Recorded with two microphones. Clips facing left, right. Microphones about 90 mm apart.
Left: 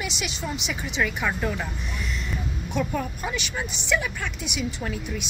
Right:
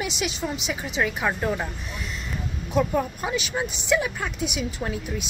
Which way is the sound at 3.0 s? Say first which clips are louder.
Right 4 dB; 20° right (ahead or behind).